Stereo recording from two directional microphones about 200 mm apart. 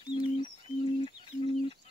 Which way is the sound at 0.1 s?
25° left (ahead or behind).